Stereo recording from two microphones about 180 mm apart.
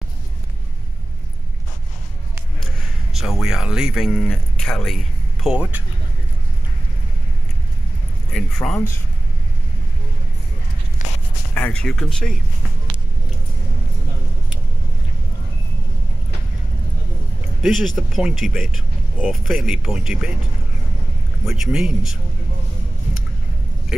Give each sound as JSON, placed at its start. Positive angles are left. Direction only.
{"t": 3.1, "sound": "speech", "side_deg": 0}
{"t": 8.3, "sound": "speech", "side_deg": 5}
{"t": 11.0, "sound": "a sound", "side_deg": 45}
{"t": 11.5, "sound": "speech", "side_deg": 5}
{"t": 17.6, "sound": "speech", "side_deg": 0}
{"t": 21.5, "sound": "speech", "side_deg": -5}
{"t": 23.9, "sound": "speech", "side_deg": -5}